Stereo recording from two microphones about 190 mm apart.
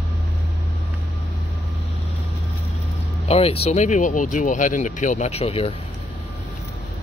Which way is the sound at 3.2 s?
30° left (ahead or behind).